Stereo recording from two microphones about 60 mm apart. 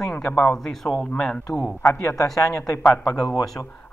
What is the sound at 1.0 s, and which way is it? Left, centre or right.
Speech, centre.